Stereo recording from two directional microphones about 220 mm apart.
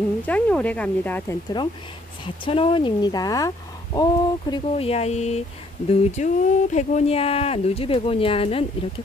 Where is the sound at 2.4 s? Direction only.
25° left (ahead or behind).